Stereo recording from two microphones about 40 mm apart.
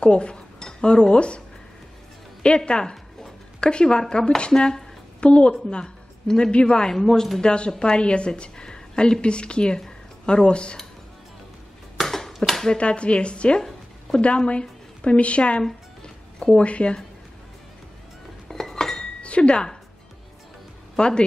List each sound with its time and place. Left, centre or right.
0.0 s speech: left
2.4 s dog: left
3.6 s a woman's voice: left
6.9 s a woman's voice: centre
7.4 s speech: left
12.0 s a sound: centre
12.7 s a woman's voice: left
18.5 s dishes: centre
19.2 s speech: left
21.0 s a woman's voice: left